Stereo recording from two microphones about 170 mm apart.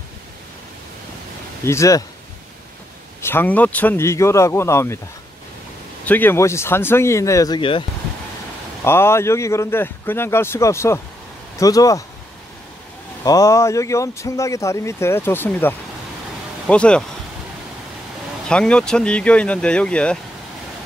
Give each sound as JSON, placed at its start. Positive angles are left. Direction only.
{"t": 1.6, "sound": "speech", "side_deg": 15}
{"t": 3.2, "sound": "speech", "side_deg": 15}
{"t": 6.0, "sound": "speech", "side_deg": 10}
{"t": 8.8, "sound": "speech", "side_deg": 15}
{"t": 13.2, "sound": "speech", "side_deg": 20}
{"t": 18.5, "sound": "speech", "side_deg": 5}